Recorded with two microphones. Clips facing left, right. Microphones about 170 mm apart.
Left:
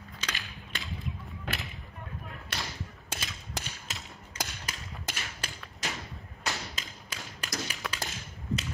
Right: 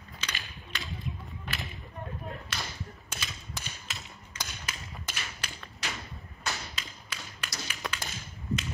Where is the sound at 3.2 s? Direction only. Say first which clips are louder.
Left 1 dB; 40° left (ahead or behind).